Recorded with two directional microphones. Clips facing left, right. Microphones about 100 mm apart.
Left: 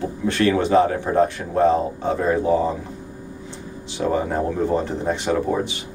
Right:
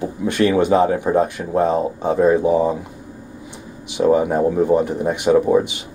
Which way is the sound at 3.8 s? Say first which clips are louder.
Right 6 dB; 15° right (ahead or behind).